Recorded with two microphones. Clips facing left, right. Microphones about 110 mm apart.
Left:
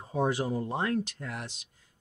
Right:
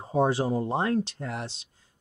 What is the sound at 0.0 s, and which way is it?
Speech, 30° right (ahead or behind).